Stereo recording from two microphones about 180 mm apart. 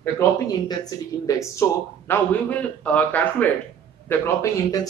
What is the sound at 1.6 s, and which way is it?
A man's voice, 15° left (ahead or behind).